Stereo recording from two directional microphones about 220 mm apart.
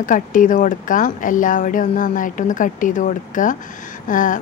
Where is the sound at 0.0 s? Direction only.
35° left (ahead or behind).